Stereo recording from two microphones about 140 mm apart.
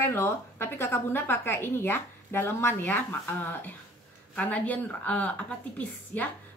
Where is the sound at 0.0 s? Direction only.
15° left (ahead or behind).